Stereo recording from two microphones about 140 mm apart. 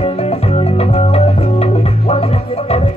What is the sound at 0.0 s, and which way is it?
Music, 45° left (ahead or behind).